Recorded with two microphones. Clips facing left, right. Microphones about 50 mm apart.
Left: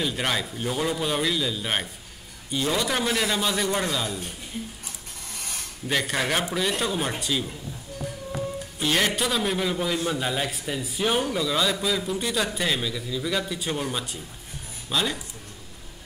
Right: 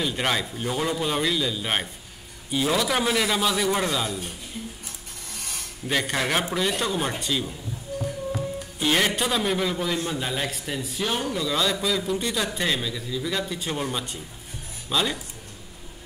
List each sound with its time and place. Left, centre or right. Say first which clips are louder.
0.0 s a man's voice: right 1 dB; centre
5.9 s a man's voice: even; centre
8.0 s music: right 1 dB; centre
8.8 s a man's voice: right 1 dB; centre